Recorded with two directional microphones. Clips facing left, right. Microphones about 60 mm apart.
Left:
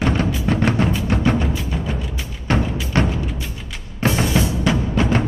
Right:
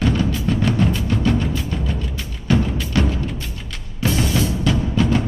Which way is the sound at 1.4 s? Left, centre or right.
Centre.